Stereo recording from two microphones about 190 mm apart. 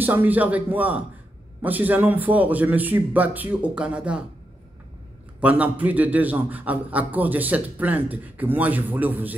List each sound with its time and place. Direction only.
0.0 s a man's voice: 10° right (ahead or behind)
5.4 s a man's voice: 10° right (ahead or behind)